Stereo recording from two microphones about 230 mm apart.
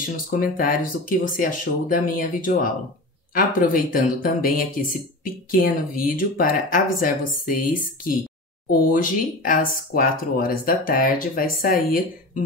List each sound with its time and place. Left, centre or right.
0.3 s speech: left
8.6 s speech: left